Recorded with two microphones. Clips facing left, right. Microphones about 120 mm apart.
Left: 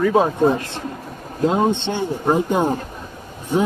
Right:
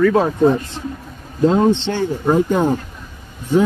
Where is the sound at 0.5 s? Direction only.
70° left (ahead or behind).